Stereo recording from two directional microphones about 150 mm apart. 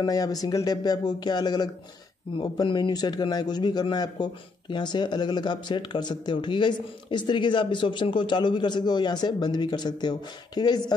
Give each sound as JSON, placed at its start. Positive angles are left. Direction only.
{"t": 0.0, "sound": "a man's voice", "side_deg": 25}